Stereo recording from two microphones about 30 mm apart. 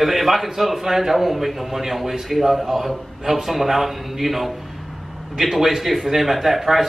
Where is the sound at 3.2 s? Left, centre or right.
Centre.